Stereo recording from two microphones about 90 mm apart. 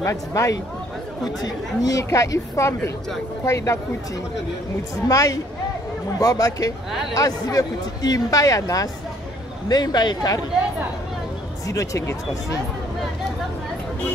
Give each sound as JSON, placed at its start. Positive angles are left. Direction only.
{"t": 0.0, "sound": "speech", "side_deg": 35}
{"t": 5.0, "sound": "speech", "side_deg": 40}
{"t": 9.7, "sound": "speech", "side_deg": 50}
{"t": 11.6, "sound": "speech", "side_deg": 35}